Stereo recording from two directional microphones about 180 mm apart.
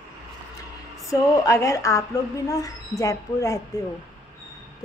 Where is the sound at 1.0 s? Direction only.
20° left (ahead or behind).